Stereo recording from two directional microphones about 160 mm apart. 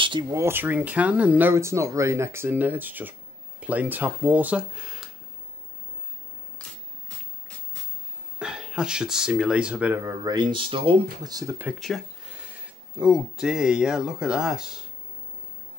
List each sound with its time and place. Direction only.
0.0 s speech: 30° right (ahead or behind)
0.4 s speech: 15° right (ahead or behind)
8.4 s speech: 5° right (ahead or behind); by 11.5 s 25° right (ahead or behind)
11.8 s a sound: centre (ahead or behind)
12.9 s speech: 5° right (ahead or behind)